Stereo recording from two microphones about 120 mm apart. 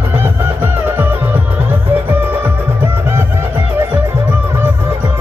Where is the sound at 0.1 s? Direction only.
15° right (ahead or behind).